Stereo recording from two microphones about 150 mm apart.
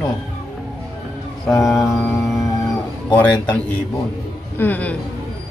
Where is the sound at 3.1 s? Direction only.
10° left (ahead or behind).